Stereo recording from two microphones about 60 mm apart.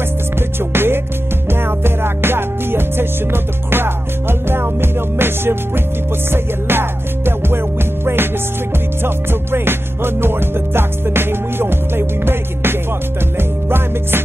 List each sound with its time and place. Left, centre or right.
0.4 s music: right